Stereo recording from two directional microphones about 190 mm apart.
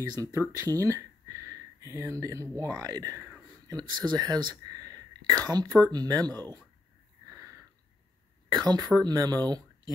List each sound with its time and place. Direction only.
0.0 s speech: 20° right (ahead or behind)
7.2 s sniff: 15° right (ahead or behind)
8.6 s speech: 20° right (ahead or behind)